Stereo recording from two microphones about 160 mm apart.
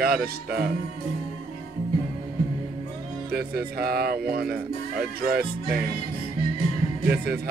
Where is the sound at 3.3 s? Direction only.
80° right.